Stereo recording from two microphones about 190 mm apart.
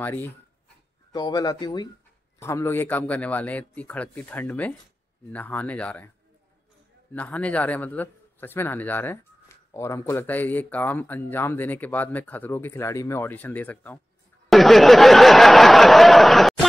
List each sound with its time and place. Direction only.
0.0 s speech: 10° left (ahead or behind)
1.1 s speech: 20° left (ahead or behind)
7.1 s speech: 10° left (ahead or behind)
14.5 s a sound: centre (ahead or behind)